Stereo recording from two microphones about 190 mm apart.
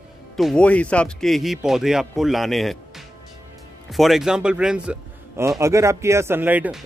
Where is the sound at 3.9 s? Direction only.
Centre (ahead or behind).